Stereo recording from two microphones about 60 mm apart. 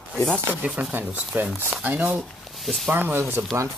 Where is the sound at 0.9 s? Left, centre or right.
Right.